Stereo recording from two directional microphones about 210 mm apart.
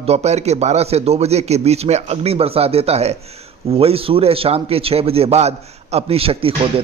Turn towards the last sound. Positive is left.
turn(degrees=-25)  # may be behind; listen again after turning